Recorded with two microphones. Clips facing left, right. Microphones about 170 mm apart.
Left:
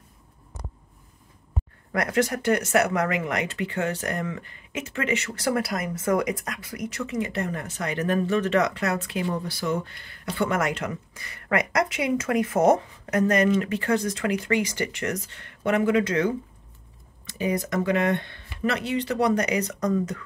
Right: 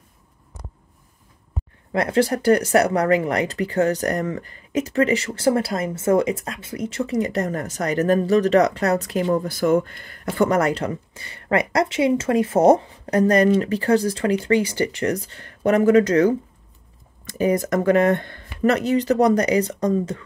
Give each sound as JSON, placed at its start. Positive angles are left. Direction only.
{"t": 1.9, "sound": "speech", "side_deg": -25}